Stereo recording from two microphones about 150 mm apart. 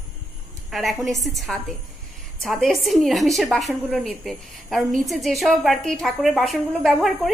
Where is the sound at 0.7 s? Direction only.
Centre (ahead or behind).